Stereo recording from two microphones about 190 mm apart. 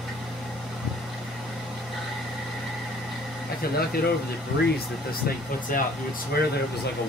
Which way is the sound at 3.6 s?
55° left (ahead or behind).